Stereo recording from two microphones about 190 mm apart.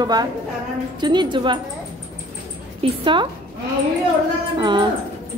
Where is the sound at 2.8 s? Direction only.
25° right (ahead or behind).